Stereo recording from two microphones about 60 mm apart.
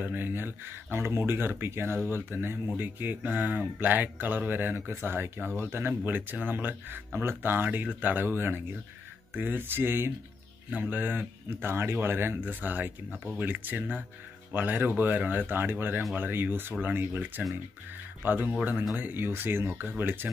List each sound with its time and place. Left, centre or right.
0.0 s speech: right